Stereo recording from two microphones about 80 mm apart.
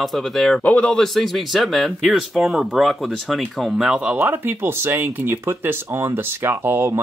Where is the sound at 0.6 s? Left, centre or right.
Centre.